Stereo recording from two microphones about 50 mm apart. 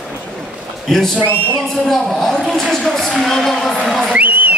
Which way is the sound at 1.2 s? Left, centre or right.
Right.